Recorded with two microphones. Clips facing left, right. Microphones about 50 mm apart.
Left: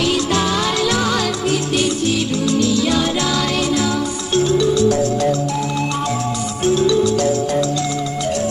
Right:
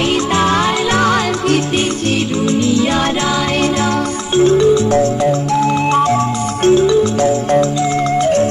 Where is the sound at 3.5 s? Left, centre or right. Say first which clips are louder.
Right 3 dB; right.